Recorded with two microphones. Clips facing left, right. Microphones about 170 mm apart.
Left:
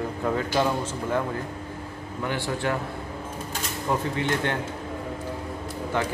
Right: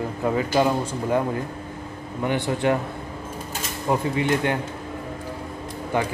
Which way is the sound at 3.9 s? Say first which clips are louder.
Right 4 dB; 10° right (ahead or behind).